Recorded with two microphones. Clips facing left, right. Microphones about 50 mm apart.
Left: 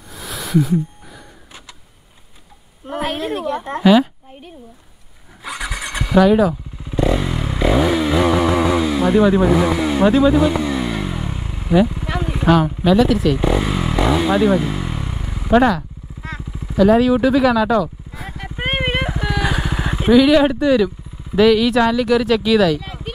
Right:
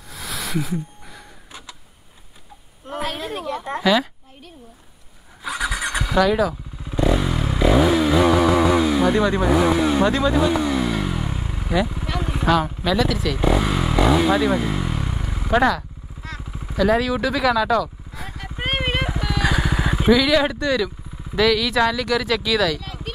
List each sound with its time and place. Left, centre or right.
0.1 s a sound: centre
3.0 s a sound: centre
3.4 s speech: centre
5.9 s speech: centre
7.2 s a sound: centre
8.9 s speech: centre
10.7 s vehicle: centre
12.1 s speech: centre
15.5 s speech: centre
16.2 s vehicle: left
16.7 s speech: centre
18.6 s vehicle: centre
20.0 s speech: centre
22.8 s a sound: centre